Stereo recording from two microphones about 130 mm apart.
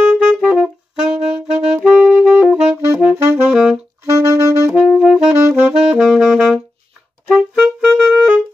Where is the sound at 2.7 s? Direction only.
25° right (ahead or behind).